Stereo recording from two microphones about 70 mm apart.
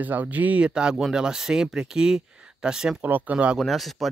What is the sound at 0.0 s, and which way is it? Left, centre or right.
Speech, right.